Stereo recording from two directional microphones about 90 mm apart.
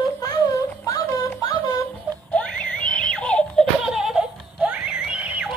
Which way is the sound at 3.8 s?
5° right (ahead or behind).